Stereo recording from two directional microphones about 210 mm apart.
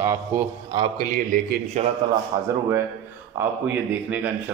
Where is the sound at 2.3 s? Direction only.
15° right (ahead or behind).